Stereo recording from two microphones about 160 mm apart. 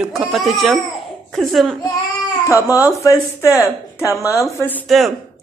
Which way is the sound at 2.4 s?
20° left (ahead or behind).